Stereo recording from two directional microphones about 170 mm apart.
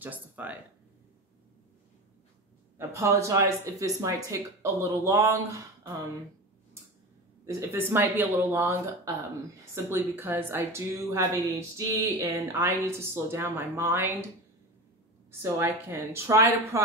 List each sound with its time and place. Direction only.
0.0 s speech: 10° right (ahead or behind)
2.8 s speech: 15° right (ahead or behind)
7.4 s speech: 15° right (ahead or behind)
15.4 s speech: 15° right (ahead or behind)